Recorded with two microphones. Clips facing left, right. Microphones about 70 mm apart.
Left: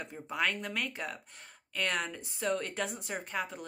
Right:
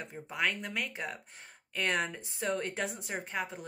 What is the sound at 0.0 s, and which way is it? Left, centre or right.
A woman's voice, centre.